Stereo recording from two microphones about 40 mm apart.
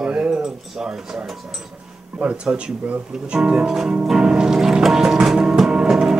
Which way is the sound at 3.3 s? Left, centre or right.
Right.